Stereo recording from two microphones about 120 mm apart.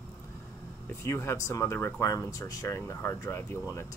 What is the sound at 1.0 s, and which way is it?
Speech, 20° left (ahead or behind).